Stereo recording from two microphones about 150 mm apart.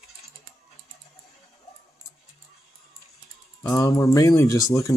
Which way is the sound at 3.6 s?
20° left (ahead or behind).